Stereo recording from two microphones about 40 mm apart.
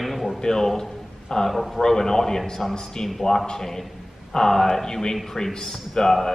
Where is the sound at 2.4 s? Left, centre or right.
Centre.